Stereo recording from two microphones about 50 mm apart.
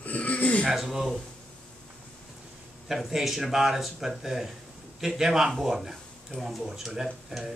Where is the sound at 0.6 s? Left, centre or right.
Centre.